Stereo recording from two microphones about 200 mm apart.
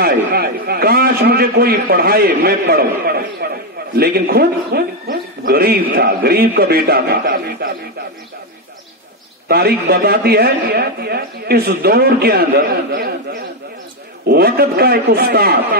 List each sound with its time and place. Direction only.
0.0 s speech: 50° right (ahead or behind)
9.5 s speech: 50° right (ahead or behind)
14.2 s speech: 50° right (ahead or behind)